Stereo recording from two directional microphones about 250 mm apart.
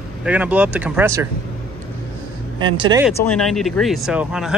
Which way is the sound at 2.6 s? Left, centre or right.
Centre.